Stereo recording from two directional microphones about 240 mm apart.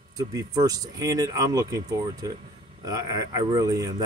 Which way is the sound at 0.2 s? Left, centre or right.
Centre.